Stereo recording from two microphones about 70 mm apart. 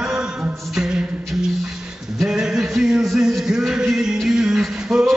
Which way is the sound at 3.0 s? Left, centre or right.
Centre.